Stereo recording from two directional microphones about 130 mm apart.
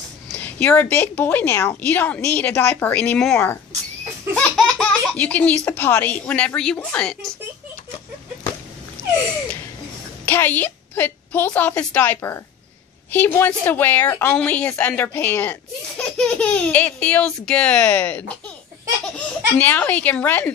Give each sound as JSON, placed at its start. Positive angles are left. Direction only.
{"t": 0.4, "sound": "a woman's voice", "side_deg": 15}
{"t": 4.4, "sound": "laughter", "side_deg": 5}
{"t": 5.7, "sound": "a woman's voice", "side_deg": 15}
{"t": 9.0, "sound": "a sound", "side_deg": -20}
{"t": 10.2, "sound": "a woman's voice", "side_deg": 15}